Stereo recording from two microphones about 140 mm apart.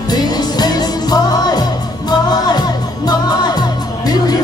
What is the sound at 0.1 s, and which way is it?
Music, 30° left (ahead or behind).